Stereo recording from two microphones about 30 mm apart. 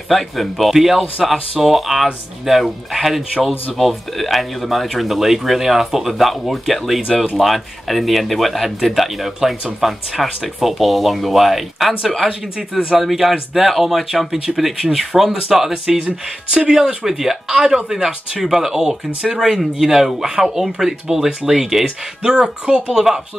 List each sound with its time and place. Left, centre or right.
0.1 s speech: centre
0.7 s speech: centre
16.4 s speech: right
22.3 s speech: right
22.9 s speech: centre